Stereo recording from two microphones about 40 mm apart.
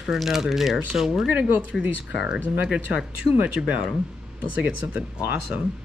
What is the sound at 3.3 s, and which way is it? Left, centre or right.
Speech, right.